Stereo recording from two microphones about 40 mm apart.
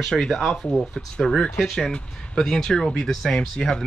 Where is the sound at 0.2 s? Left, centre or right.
Centre.